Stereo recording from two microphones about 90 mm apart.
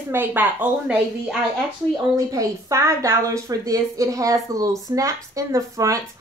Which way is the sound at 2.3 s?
40° right (ahead or behind).